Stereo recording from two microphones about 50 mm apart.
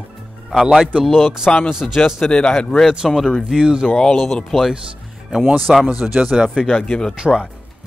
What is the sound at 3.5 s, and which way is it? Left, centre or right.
Speech, centre.